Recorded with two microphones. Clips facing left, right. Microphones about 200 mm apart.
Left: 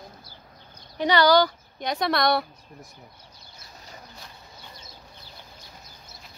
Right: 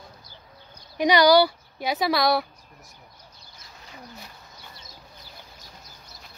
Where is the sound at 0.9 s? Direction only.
15° right (ahead or behind).